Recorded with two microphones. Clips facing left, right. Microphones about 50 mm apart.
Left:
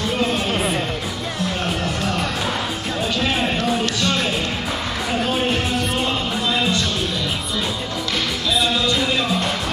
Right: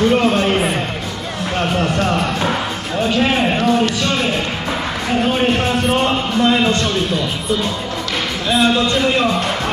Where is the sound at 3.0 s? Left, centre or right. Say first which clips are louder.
Right 6 dB; right.